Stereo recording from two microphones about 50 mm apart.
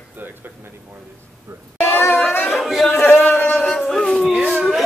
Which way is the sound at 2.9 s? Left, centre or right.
Left.